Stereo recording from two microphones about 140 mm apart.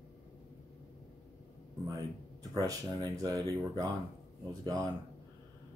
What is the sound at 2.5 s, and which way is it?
Speech, 25° right (ahead or behind).